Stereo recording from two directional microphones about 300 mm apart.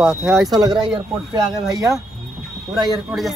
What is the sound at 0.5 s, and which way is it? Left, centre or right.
Speech, centre.